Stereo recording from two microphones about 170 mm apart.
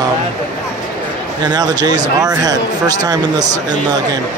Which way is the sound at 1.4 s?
25° right (ahead or behind).